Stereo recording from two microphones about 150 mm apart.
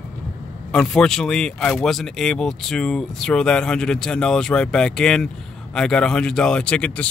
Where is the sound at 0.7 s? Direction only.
5° left (ahead or behind).